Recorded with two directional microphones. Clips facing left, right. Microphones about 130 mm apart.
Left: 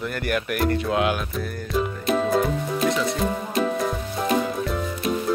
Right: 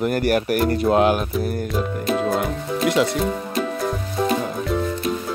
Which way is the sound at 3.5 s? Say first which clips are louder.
Even; centre (ahead or behind).